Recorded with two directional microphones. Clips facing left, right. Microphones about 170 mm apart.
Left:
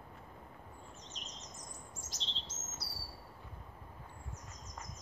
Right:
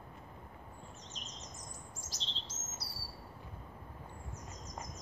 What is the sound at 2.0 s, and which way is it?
Chirp, 35° right (ahead or behind).